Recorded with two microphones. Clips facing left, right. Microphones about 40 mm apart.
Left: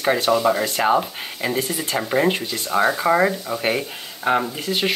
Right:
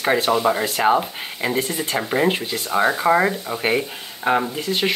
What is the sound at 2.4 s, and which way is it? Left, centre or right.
Speech, centre.